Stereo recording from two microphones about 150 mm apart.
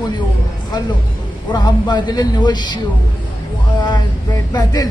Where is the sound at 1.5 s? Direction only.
30° left (ahead or behind).